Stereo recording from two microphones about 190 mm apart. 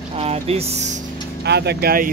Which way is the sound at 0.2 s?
30° right (ahead or behind).